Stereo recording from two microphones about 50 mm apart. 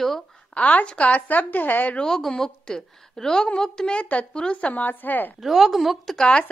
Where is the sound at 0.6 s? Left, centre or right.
Left.